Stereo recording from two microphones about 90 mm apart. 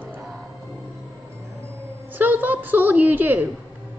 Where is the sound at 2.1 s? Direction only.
20° right (ahead or behind).